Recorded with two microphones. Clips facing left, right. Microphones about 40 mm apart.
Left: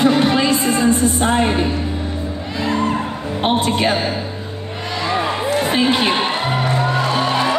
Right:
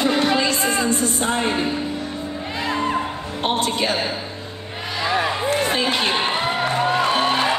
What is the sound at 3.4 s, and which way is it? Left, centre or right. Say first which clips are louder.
Speech: left 4 dB; centre.